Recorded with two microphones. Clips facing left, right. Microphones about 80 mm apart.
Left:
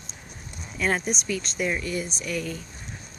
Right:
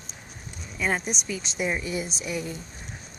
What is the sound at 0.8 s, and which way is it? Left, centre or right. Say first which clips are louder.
Speech: left 2 dB; centre.